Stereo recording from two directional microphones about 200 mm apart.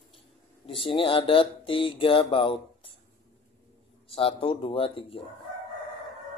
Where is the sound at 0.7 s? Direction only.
25° left (ahead or behind).